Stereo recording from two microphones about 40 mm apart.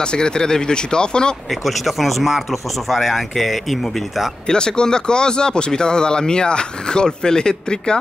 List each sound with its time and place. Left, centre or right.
0.0 s speech: left
1.5 s speech: centre
4.5 s speech: centre